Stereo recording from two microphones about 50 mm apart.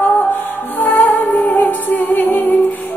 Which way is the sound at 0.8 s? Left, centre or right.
Left.